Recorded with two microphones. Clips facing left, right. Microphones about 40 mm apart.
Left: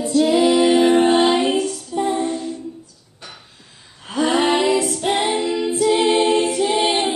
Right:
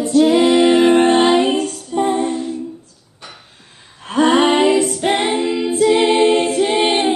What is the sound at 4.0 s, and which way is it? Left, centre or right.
Female singing, right.